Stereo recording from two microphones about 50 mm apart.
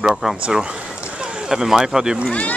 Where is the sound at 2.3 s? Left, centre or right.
Left.